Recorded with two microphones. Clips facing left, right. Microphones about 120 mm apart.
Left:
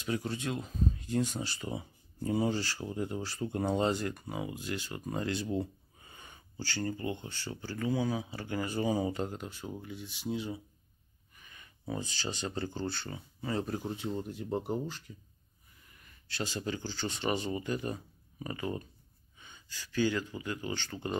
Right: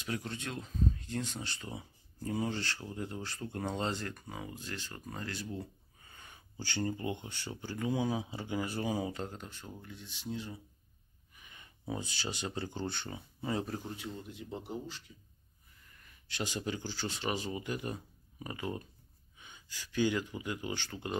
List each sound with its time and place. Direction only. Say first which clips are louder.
0.0 s speech: left 5 dB; centre (ahead or behind)
5.1 s speech: left 8 dB; 20° left (ahead or behind)
5.6 s a sound: left 8 dB; 20° left (ahead or behind)
6.6 s speech: even; 15° right (ahead or behind)
8.5 s speech: left 3 dB; centre (ahead or behind); by 10.6 s 15° left (ahead or behind)
11.3 s a sound: even; 20° right (ahead or behind)
11.9 s speech: left 2 dB; 10° right (ahead or behind)
14.1 s speech: left 8 dB; 45° left (ahead or behind)
16.3 s speech: left 1 dB; 15° right (ahead or behind)